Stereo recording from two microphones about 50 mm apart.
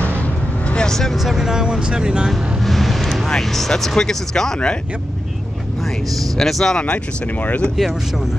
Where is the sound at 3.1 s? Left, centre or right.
Centre.